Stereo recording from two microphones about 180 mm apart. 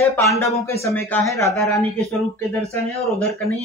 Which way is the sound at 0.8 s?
15° left (ahead or behind).